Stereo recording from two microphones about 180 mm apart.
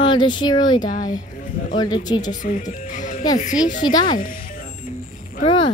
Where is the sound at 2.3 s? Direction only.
45° left (ahead or behind).